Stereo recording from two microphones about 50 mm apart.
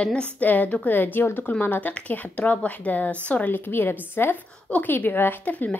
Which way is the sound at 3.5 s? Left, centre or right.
Left.